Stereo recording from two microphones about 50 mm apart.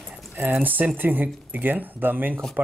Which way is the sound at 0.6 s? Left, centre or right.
Right.